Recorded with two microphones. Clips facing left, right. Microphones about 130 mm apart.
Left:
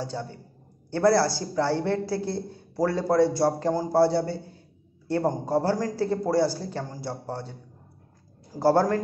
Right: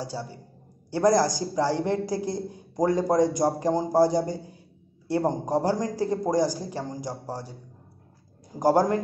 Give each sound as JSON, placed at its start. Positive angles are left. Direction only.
{"t": 0.0, "sound": "speech", "side_deg": -10}
{"t": 8.5, "sound": "speech", "side_deg": -15}